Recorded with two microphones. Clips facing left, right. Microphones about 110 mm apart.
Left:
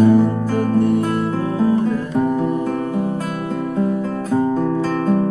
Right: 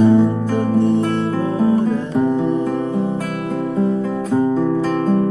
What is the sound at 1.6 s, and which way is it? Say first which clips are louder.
Guitar: right 1 dB; 25° right (ahead or behind).